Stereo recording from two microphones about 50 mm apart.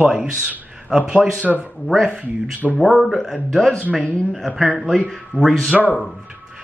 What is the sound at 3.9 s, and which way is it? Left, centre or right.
Speech, left.